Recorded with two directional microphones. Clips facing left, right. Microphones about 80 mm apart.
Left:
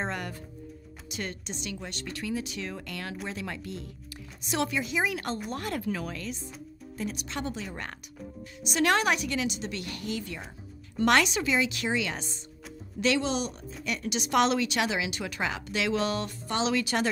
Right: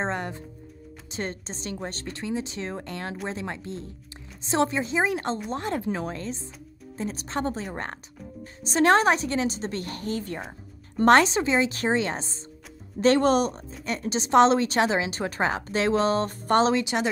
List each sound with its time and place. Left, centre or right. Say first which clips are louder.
0.0 s speech: right 4 dB; right
13.0 s speech: right 8 dB; right
16.7 s speech: right 2 dB; centre